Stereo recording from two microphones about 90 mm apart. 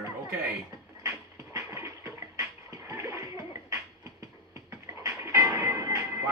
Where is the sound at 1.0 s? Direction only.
35° right (ahead or behind).